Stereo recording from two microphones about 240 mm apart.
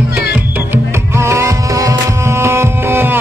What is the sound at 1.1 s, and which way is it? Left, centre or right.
Music, centre.